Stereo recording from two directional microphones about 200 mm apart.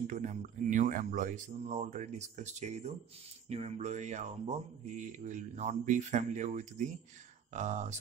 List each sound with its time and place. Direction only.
0.0 s speech: 40° right (ahead or behind)